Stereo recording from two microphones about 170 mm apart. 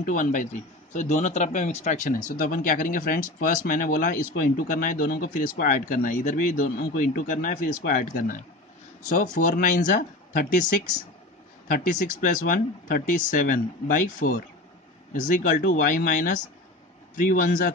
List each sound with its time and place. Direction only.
0.0 s a man's voice: 50° left (ahead or behind)
11.6 s a man's voice: 50° left (ahead or behind)